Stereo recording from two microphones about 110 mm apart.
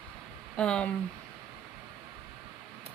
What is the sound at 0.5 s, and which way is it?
Speech, 10° left (ahead or behind).